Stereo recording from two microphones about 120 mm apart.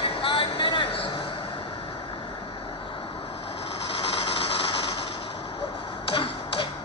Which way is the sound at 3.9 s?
55° left (ahead or behind).